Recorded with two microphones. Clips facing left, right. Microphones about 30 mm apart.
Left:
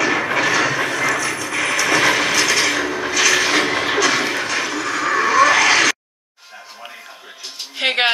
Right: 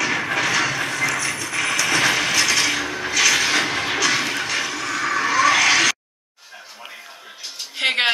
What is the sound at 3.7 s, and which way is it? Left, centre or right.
Music, left.